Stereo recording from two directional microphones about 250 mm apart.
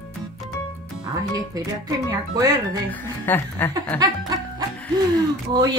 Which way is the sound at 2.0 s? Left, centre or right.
Centre.